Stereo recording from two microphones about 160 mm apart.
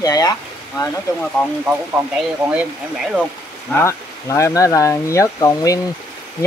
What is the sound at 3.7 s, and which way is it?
Speech, 15° left (ahead or behind).